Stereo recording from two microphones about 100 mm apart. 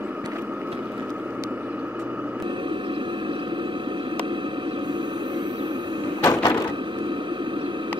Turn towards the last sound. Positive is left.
turn(degrees=35)  # may be behind; listen again after turning